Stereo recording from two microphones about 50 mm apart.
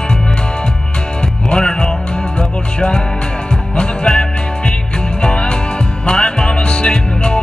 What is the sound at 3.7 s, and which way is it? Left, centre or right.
Music, centre.